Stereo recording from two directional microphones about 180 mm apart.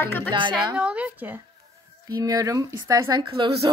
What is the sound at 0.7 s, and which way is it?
Speech, 5° right (ahead or behind).